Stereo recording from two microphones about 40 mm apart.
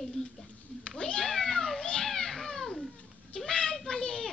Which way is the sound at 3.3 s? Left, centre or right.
Left.